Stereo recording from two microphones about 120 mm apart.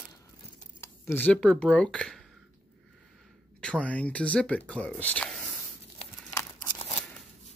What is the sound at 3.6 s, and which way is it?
Speech, 10° left (ahead or behind).